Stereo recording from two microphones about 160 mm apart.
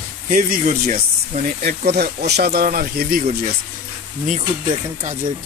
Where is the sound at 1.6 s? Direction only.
75° right (ahead or behind).